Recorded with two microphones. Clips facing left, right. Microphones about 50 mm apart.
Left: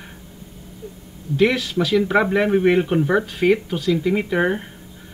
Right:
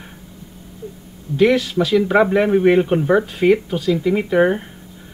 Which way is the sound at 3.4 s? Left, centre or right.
Right.